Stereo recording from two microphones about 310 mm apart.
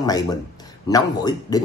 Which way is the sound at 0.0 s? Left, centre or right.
Centre.